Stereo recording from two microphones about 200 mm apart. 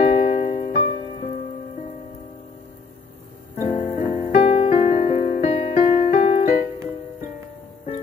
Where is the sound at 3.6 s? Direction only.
25° left (ahead or behind).